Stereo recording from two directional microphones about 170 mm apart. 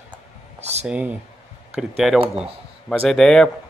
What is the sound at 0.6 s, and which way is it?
Speech, 40° right (ahead or behind).